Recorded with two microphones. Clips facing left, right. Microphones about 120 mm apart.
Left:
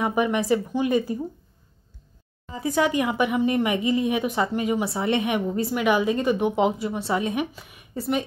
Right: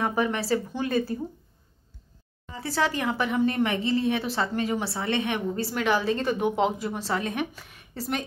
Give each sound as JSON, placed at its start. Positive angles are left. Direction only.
{"t": 0.0, "sound": "a woman's voice", "side_deg": 15}
{"t": 2.5, "sound": "a woman's voice", "side_deg": 15}